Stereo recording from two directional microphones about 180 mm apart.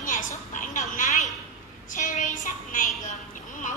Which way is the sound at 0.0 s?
45° left (ahead or behind).